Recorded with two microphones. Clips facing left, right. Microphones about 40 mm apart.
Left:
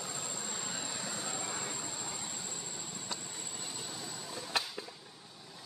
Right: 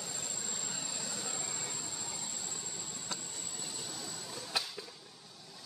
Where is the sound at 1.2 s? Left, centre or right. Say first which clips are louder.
Left 3 dB; centre.